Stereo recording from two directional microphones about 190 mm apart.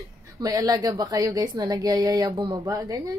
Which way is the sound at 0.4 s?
20° right (ahead or behind).